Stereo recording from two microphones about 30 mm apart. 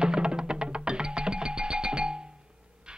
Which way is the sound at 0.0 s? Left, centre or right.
Right.